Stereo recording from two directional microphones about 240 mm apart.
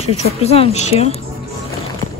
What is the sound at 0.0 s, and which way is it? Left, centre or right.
Speech, left.